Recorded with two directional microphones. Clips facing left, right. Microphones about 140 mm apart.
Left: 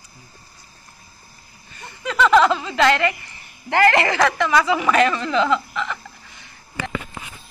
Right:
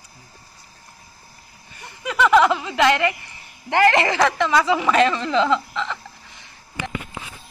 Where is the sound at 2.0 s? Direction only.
15° right (ahead or behind).